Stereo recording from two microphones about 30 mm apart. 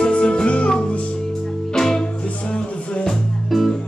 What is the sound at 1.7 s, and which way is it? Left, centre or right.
Music, centre.